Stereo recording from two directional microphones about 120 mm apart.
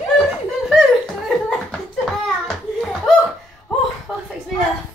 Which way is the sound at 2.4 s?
Centre (ahead or behind).